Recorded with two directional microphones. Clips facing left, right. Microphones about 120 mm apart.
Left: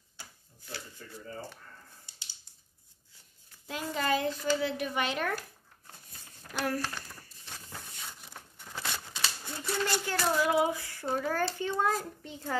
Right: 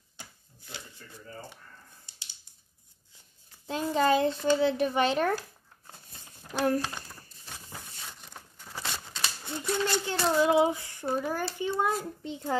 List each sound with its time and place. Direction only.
3.6 s a child's voice: 30° right (ahead or behind)
5.9 s a sound: 25° right (ahead or behind)
6.6 s speech: 20° right (ahead or behind)
8.0 s a sound: 5° left (ahead or behind)
8.6 s a sound: 5° right (ahead or behind)
9.4 s typewriter: 20° right (ahead or behind)
10.0 s child singing: 25° right (ahead or behind)
11.1 s speech: 15° right (ahead or behind)
12.0 s child singing: 20° right (ahead or behind)